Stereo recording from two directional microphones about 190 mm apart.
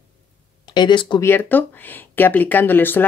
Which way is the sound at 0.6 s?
25° left (ahead or behind).